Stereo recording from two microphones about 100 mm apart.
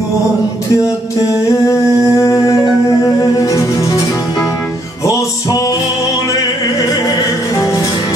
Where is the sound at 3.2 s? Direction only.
35° left (ahead or behind).